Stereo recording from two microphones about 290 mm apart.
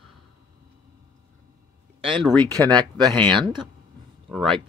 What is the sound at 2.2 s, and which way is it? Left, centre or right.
Speech, centre.